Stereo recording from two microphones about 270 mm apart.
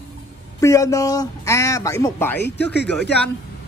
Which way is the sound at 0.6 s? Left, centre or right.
Centre.